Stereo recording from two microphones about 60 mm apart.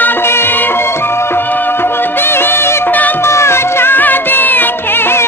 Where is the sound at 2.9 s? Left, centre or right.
Left.